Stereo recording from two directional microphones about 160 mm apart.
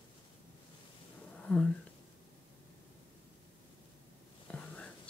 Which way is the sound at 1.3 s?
5° left (ahead or behind).